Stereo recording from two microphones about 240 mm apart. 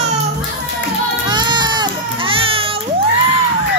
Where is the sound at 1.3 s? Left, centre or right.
Centre.